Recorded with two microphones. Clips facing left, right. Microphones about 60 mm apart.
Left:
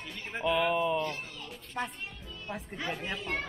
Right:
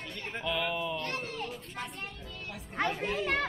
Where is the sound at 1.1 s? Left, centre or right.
Right.